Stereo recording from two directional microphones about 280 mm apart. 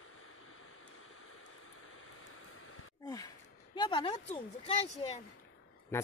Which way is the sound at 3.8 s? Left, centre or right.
Centre.